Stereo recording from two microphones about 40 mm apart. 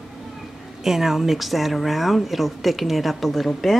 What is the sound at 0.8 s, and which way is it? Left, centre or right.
A woman's voice, centre.